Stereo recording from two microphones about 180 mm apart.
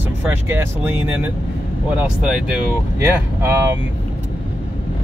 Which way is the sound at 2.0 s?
5° right (ahead or behind).